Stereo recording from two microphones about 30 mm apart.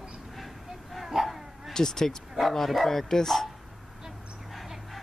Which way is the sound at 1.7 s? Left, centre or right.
Centre.